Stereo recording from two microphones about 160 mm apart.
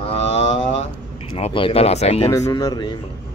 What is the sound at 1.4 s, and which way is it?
Speech, 35° left (ahead or behind).